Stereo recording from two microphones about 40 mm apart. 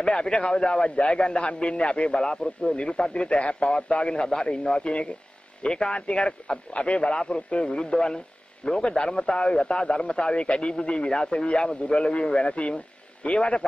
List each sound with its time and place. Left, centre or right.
0.0 s a man's voice: left